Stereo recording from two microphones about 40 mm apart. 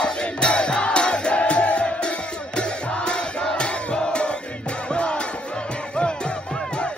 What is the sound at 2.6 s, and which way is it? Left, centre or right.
Crowd, left.